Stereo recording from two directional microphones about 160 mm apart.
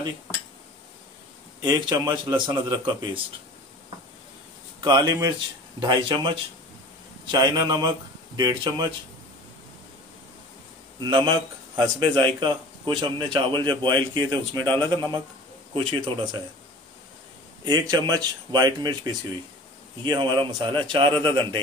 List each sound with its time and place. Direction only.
1.6 s speech: 25° right (ahead or behind)
4.8 s speech: 25° right (ahead or behind)
11.0 s speech: 30° right (ahead or behind)
14.8 s speech: 15° left (ahead or behind)
15.7 s speech: 30° right (ahead or behind)
17.6 s speech: 25° right (ahead or behind)
21.1 s speech: 10° left (ahead or behind)